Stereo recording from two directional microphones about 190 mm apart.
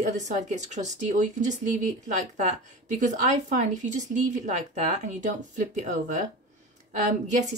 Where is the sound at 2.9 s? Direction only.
40° right (ahead or behind).